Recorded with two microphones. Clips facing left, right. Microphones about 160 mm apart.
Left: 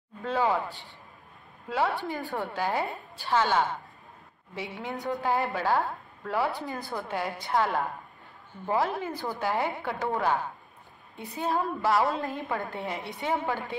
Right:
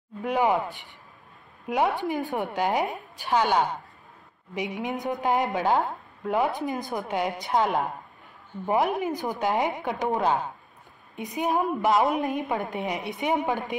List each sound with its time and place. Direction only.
0.2 s a woman's voice: 15° right (ahead or behind)